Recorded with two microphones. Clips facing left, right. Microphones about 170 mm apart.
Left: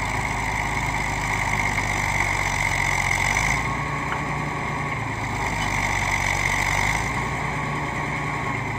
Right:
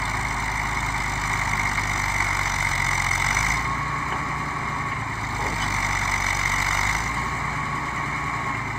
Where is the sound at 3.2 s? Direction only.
25° left (ahead or behind).